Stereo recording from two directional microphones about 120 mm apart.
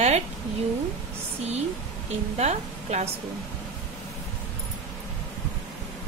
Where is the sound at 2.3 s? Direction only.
75° right (ahead or behind).